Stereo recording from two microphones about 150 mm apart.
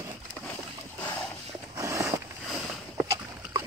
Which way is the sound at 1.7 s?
20° right (ahead or behind).